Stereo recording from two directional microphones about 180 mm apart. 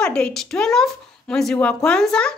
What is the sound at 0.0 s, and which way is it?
A woman's voice, 5° left (ahead or behind).